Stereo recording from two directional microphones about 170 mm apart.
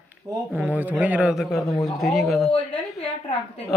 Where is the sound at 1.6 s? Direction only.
20° left (ahead or behind).